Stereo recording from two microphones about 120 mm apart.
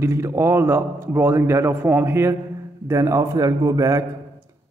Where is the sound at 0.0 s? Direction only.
20° right (ahead or behind).